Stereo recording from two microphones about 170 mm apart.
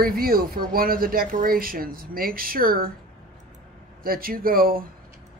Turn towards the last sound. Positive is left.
turn(degrees=-60)  # may be behind; listen again after turning